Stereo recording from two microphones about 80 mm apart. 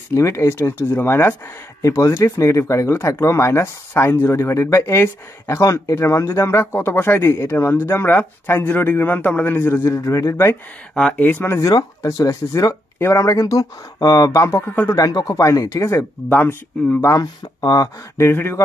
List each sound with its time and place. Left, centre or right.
0.1 s speech: left
1.8 s speech: left
11.1 s speech: left
12.0 s speech: left
13.0 s speech: left
14.6 s speech: left
15.0 s speech: left
16.3 s speech: left
17.2 s speech: left
18.1 s speech: left